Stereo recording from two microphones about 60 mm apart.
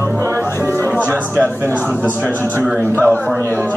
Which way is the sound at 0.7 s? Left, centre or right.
Left.